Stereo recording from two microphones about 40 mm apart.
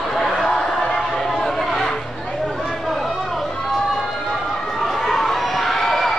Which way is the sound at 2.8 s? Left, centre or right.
Centre.